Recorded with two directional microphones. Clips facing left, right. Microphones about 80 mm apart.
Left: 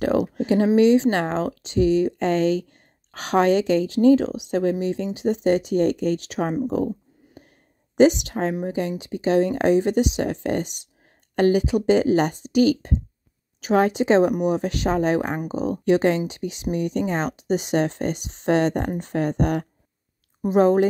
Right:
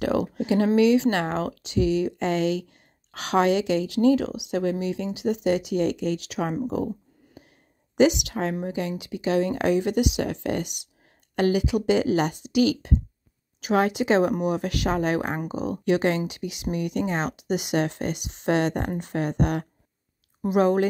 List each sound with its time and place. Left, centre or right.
0.4 s a woman's voice: left
8.0 s a woman's voice: left